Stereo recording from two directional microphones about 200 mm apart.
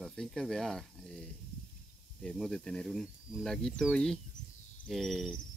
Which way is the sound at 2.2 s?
5° left (ahead or behind).